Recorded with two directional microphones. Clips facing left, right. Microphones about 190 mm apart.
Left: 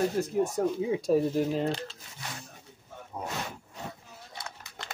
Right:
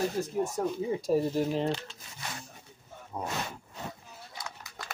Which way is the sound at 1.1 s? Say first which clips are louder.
Left 2 dB; 90° left.